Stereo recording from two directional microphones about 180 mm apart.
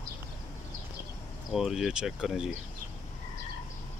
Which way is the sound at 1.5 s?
Centre (ahead or behind).